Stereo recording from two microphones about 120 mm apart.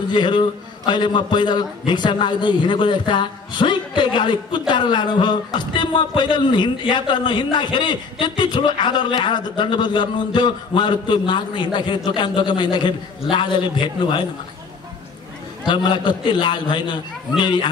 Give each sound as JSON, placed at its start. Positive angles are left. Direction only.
{"t": 0.1, "sound": "a man's voice", "side_deg": 40}
{"t": 15.6, "sound": "a man's voice", "side_deg": 40}